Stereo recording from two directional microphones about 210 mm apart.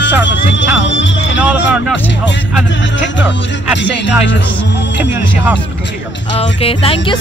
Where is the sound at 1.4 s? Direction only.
5° right (ahead or behind).